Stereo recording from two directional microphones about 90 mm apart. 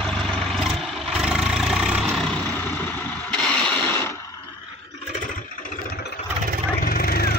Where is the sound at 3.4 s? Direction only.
10° left (ahead or behind).